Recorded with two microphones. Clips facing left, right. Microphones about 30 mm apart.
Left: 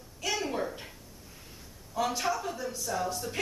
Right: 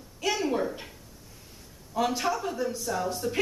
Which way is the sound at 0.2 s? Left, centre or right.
Centre.